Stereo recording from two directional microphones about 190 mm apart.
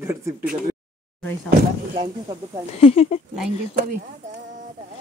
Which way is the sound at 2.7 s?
35° left (ahead or behind).